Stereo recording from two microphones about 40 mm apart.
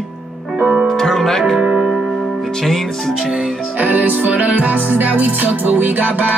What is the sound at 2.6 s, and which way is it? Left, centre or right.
Speech, centre.